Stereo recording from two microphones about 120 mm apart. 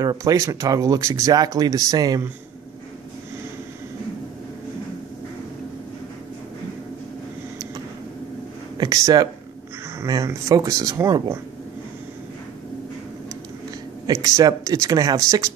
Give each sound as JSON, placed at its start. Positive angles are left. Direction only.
{"t": 0.0, "sound": "speech", "side_deg": -30}
{"t": 8.7, "sound": "speech", "side_deg": -30}
{"t": 14.0, "sound": "speech", "side_deg": -30}